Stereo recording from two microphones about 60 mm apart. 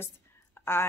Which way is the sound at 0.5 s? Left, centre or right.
Left.